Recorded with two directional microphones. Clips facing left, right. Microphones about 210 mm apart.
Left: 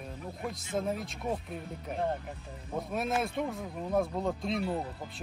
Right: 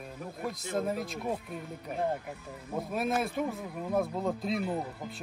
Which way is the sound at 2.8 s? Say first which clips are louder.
Right 1 dB; centre (ahead or behind).